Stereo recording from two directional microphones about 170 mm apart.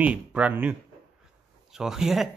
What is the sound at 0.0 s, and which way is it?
Speech, 10° right (ahead or behind).